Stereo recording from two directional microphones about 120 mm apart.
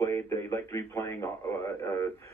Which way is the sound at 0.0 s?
25° left (ahead or behind).